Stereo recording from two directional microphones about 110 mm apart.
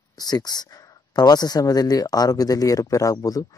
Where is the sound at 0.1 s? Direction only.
35° left (ahead or behind).